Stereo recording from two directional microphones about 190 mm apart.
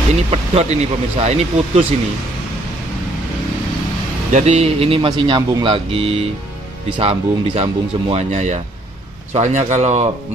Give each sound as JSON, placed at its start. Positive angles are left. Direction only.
{"t": 0.1, "sound": "a man's voice", "side_deg": -35}
{"t": 4.3, "sound": "a man's voice", "side_deg": -40}